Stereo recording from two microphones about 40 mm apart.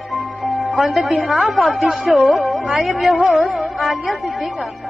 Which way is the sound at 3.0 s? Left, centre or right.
Right.